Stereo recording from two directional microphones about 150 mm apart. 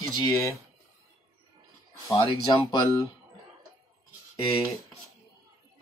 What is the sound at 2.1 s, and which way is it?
Speech, 25° left (ahead or behind).